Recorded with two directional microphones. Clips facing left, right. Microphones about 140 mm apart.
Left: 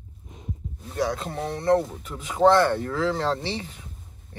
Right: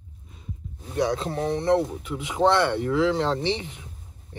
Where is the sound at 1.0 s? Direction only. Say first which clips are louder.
Right 2 dB; 25° right (ahead or behind).